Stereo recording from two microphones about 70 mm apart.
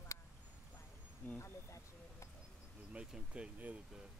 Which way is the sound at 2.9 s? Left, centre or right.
Centre.